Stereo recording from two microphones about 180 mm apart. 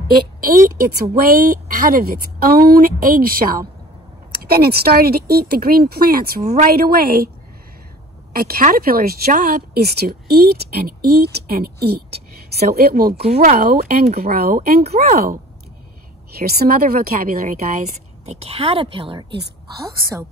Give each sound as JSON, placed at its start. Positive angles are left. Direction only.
{"t": 1.1, "sound": "a woman's voice", "side_deg": -55}
{"t": 8.3, "sound": "speech", "side_deg": -55}
{"t": 16.3, "sound": "speech", "side_deg": -60}
{"t": 18.2, "sound": "a woman's voice", "side_deg": -35}
{"t": 19.8, "sound": "a woman's voice", "side_deg": -15}